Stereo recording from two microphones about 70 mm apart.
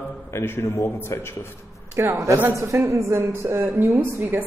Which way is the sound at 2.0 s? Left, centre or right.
Right.